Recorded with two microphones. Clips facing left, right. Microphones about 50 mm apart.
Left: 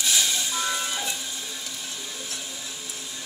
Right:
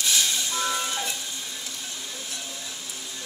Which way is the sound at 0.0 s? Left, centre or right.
Centre.